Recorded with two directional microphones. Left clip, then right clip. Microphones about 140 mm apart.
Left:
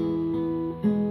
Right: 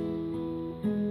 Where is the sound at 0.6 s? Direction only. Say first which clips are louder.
Left 6 dB; 20° left (ahead or behind).